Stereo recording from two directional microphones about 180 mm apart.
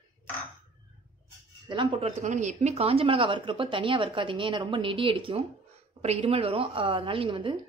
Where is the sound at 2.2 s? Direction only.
40° right (ahead or behind).